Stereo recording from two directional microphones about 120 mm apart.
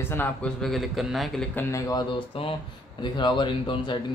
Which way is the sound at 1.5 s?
20° left (ahead or behind).